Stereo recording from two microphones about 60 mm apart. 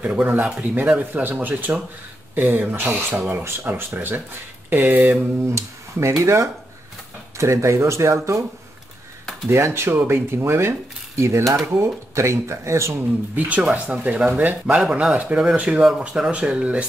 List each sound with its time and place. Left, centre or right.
0.0 s speech: right
3.4 s speech: right
5.4 s speech: right
9.5 s speech: right
13.4 s speech: right
14.7 s speech: centre